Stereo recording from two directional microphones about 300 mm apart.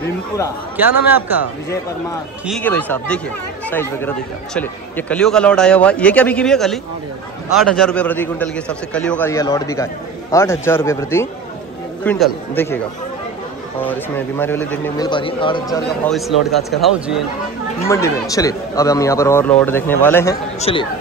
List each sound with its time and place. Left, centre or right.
0.7 s a man's voice: centre
2.4 s a man's voice: centre
16.1 s a man's voice: centre
17.8 s speech: centre
20.7 s speech: centre